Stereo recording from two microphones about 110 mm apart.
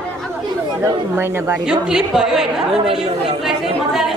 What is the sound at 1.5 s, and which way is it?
Speech, 10° right (ahead or behind).